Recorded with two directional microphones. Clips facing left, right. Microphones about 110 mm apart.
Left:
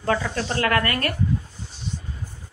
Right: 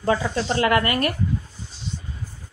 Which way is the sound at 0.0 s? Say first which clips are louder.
Right 2 dB; 15° right (ahead or behind).